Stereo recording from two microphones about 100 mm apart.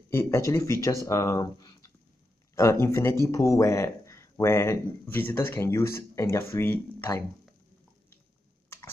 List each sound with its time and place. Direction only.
0.1 s speech: 25° left (ahead or behind)
2.5 s speech: 30° left (ahead or behind)